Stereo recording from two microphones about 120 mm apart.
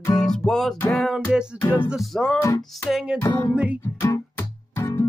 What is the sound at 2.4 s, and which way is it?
Music, 20° left (ahead or behind).